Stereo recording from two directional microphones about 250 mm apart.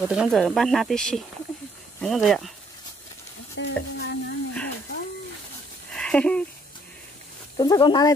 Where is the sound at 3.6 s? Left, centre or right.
Left.